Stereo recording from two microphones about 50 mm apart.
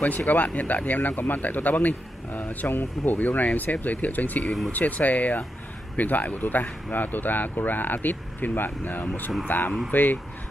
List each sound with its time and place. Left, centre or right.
0.2 s speech: left